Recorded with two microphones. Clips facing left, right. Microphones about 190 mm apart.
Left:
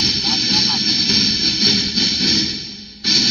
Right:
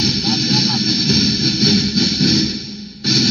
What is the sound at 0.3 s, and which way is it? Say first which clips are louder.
Music: right 6 dB; 40° right (ahead or behind).